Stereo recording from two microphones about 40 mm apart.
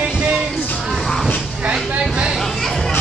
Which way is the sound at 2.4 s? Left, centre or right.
Centre.